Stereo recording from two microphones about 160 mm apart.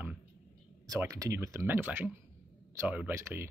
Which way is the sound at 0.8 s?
20° right (ahead or behind).